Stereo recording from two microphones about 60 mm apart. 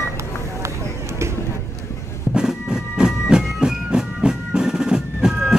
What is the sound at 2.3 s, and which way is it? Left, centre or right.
Music, centre.